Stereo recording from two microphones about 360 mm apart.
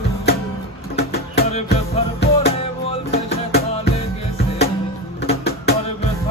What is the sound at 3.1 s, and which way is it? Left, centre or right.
Music, centre.